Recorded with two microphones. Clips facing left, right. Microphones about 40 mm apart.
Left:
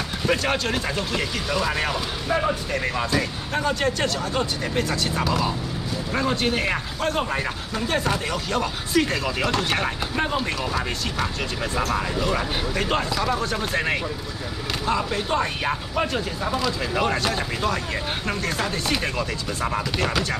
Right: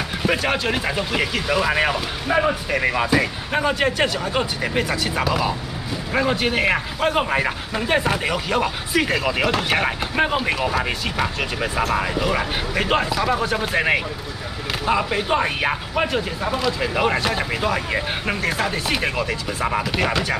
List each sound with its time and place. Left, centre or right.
0.2 s speech: centre